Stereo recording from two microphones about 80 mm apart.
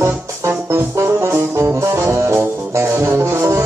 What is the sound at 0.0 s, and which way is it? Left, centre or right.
Music, right.